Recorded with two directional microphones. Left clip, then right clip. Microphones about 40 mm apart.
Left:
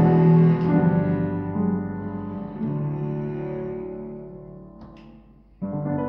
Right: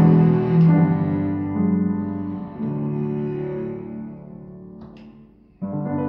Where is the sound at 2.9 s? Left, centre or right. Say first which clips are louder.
Right 4 dB; right.